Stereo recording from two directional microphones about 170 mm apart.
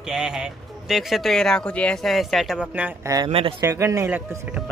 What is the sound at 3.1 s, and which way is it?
Speech, 30° right (ahead or behind).